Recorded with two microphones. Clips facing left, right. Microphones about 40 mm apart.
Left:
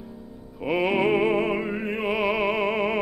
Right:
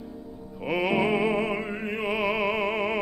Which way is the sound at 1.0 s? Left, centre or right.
Centre.